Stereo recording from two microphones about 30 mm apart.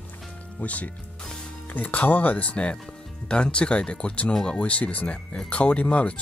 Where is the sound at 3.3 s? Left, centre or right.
Left.